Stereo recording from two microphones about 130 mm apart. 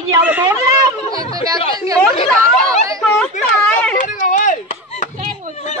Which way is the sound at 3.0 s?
Centre (ahead or behind).